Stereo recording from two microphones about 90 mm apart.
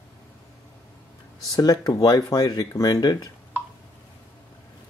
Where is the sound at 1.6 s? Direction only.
45° left (ahead or behind).